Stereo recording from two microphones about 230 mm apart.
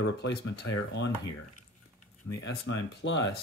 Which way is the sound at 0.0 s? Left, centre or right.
Left.